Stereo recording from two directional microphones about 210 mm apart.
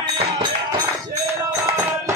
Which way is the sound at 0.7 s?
15° right (ahead or behind).